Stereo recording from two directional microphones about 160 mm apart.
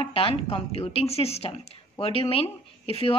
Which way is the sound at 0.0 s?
35° left (ahead or behind).